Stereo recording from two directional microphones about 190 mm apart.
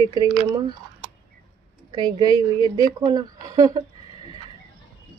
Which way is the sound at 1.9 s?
20° right (ahead or behind).